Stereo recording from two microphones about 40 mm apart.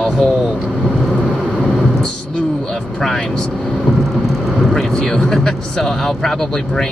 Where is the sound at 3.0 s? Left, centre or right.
Centre.